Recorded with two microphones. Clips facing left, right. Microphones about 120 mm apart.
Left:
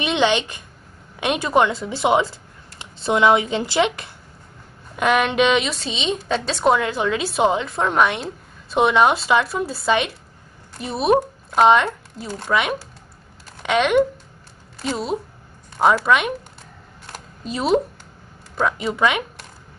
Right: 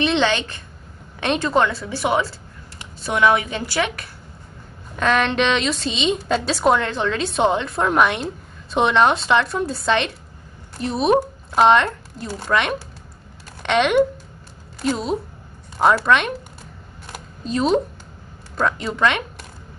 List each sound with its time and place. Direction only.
0.0 s a woman's voice: 15° left (ahead or behind)
17.5 s a woman's voice: 5° left (ahead or behind)